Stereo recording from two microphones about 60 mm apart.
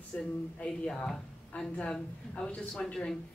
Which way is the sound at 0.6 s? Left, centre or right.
Centre.